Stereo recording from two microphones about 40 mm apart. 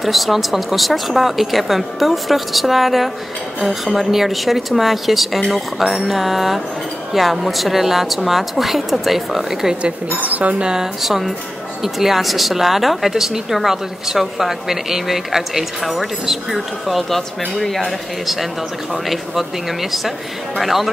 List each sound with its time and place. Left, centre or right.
0.0 s a woman's voice: centre
10.2 s speech: right
10.6 s speech: centre
11.0 s a woman's voice: centre